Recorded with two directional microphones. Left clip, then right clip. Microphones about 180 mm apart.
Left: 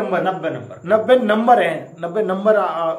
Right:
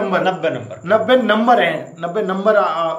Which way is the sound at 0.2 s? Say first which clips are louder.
Right 3 dB; 25° right (ahead or behind).